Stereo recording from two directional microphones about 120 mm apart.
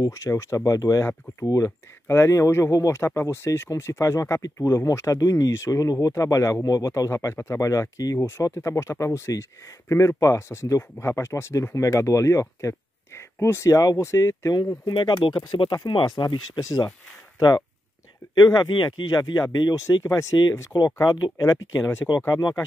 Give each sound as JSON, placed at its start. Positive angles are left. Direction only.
{"t": 0.0, "sound": "speech", "side_deg": 25}